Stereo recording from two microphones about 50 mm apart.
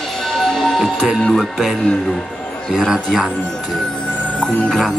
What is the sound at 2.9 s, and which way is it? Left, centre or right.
Speech, centre.